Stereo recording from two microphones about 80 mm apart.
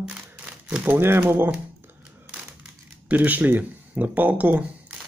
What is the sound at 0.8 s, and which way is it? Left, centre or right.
Speech, right.